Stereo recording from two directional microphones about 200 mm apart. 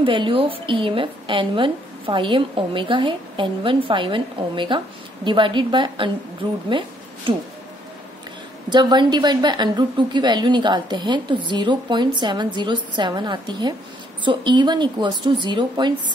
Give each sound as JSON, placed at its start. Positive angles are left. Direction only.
{"t": 0.0, "sound": "a woman's voice", "side_deg": -25}
{"t": 8.6, "sound": "a woman's voice", "side_deg": -20}